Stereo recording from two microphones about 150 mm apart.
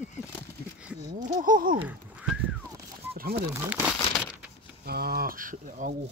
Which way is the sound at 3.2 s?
90° right.